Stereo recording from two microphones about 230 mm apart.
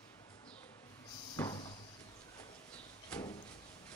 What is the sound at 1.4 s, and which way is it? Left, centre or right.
Cupboard open or close, centre.